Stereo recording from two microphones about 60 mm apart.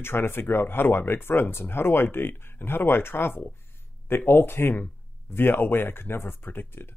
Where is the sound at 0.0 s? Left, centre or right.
Left.